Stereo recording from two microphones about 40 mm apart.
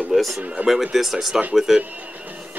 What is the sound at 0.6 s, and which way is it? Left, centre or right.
Speech, right.